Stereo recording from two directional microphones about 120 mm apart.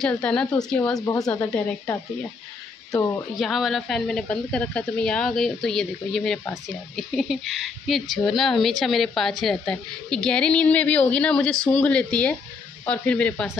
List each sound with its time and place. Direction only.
0.2 s a woman's voice: 5° left (ahead or behind)
1.1 s speech: 30° left (ahead or behind)
3.3 s a woman's voice: centre (ahead or behind)